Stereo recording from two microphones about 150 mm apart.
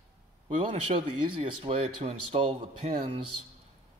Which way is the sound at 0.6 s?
40° right (ahead or behind).